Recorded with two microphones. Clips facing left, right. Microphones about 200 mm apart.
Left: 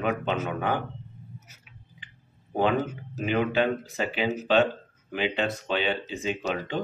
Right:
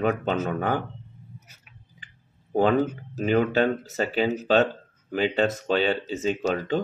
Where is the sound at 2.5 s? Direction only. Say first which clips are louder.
Right 4 dB; 40° right (ahead or behind).